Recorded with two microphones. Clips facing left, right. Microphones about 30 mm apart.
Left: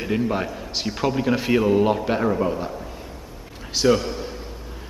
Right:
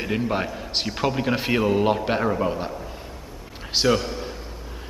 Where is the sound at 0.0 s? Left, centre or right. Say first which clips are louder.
Left 1 dB; centre.